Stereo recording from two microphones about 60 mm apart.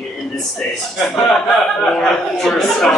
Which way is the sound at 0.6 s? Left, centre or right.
Centre.